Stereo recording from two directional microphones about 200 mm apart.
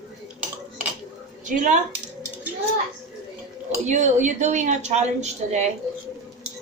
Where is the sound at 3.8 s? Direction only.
35° right (ahead or behind).